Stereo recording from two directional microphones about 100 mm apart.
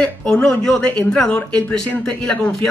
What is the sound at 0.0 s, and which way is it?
Speech, 10° left (ahead or behind).